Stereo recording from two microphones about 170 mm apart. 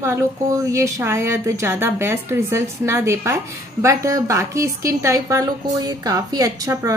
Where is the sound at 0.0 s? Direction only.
15° right (ahead or behind).